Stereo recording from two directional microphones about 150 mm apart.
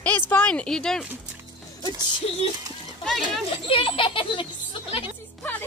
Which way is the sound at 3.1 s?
Centre (ahead or behind).